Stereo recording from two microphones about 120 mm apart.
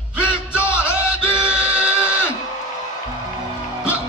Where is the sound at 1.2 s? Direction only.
10° right (ahead or behind).